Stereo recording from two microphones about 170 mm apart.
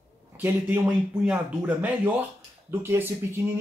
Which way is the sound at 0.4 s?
10° right (ahead or behind).